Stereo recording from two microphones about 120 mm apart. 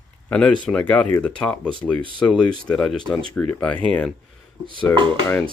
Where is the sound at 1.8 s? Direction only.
20° left (ahead or behind).